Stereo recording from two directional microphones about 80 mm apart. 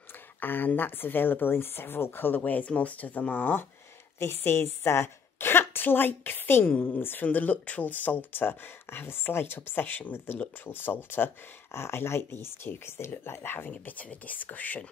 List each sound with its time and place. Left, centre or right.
0.4 s a woman's voice: left